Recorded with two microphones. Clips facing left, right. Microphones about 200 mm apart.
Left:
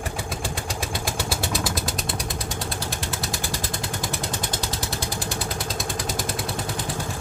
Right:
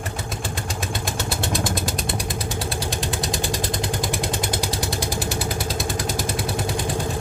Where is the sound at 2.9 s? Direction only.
15° right (ahead or behind).